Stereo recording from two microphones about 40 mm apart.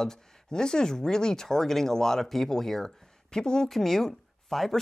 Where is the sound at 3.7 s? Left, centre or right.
Centre.